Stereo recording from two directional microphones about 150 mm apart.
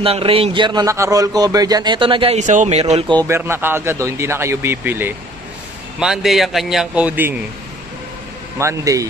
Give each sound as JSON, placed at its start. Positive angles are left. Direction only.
{"t": 0.0, "sound": "a man's voice", "side_deg": -40}
{"t": 2.3, "sound": "speech", "side_deg": -55}
{"t": 3.2, "sound": "speech", "side_deg": -15}
{"t": 5.9, "sound": "a man's voice", "side_deg": -5}
{"t": 8.5, "sound": "a man's voice", "side_deg": -20}